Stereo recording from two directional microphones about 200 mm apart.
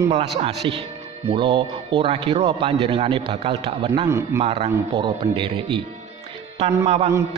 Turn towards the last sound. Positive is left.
turn(degrees=-30)  # may be behind; listen again after turning